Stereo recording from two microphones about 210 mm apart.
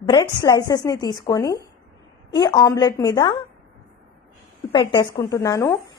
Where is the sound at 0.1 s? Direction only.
20° left (ahead or behind).